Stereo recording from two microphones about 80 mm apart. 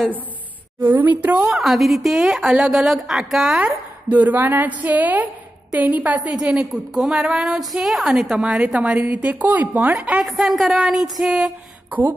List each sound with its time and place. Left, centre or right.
0.7 s a woman's voice: right
1.6 s a woman's voice: centre
3.5 s a woman's voice: centre
6.4 s a woman's voice: centre
10.2 s a woman's voice: centre
11.9 s a woman's voice: right